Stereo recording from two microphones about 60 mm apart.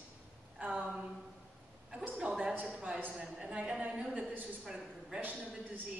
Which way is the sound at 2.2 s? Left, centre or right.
Centre.